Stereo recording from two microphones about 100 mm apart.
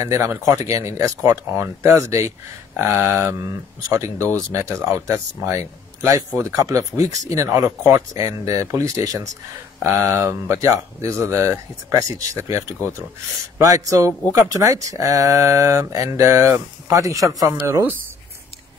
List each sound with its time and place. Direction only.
0.0 s speech: 30° right (ahead or behind)